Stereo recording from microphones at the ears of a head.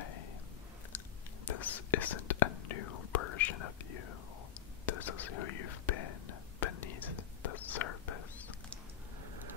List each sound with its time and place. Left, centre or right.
0.0 s whispering: left